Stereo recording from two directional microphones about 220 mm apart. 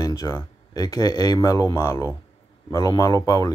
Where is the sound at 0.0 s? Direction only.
15° left (ahead or behind).